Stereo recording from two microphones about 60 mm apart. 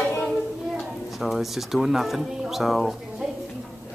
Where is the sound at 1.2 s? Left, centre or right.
Centre.